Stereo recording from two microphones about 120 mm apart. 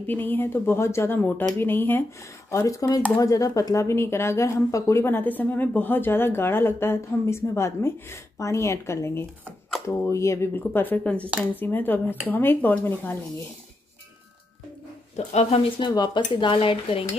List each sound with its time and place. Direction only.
0.0 s a woman's voice: 15° left (ahead or behind)
15.1 s speech: 65° left (ahead or behind)
15.8 s speech: 40° left (ahead or behind)